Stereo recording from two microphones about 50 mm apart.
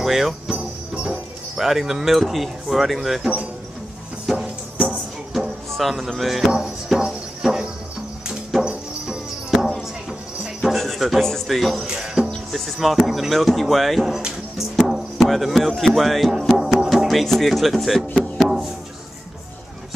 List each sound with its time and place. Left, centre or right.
0.0 s speech: centre
0.6 s jingle bell: centre
1.6 s speech: centre
4.3 s music: centre
9.0 s music: centre
11.2 s speech: centre
11.9 s music: centre
12.5 s speech: centre
14.8 s music: centre
15.8 s speech: centre
16.5 s music: centre
17.1 s speech: centre